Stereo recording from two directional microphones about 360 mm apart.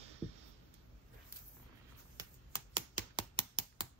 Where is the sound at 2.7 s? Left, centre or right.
Centre.